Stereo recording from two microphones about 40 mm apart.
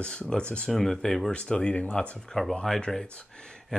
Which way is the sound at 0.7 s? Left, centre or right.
Centre.